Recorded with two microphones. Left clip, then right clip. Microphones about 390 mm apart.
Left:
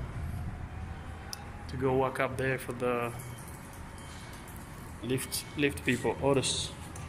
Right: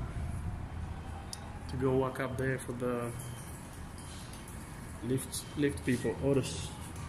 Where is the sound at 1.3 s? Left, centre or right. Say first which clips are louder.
Left 3 dB; centre.